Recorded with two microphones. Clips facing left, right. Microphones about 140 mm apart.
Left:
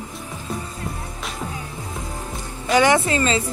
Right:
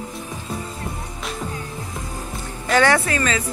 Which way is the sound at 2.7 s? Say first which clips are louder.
Left 1 dB; 20° left (ahead or behind).